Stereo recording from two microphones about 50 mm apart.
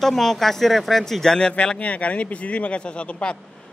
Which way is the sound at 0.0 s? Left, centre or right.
Centre.